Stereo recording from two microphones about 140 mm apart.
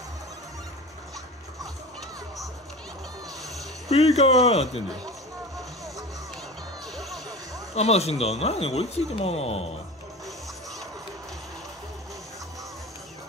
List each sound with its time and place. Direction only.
3.9 s speech: 50° left (ahead or behind)
6.9 s music: centre (ahead or behind)
7.7 s speech: 50° left (ahead or behind)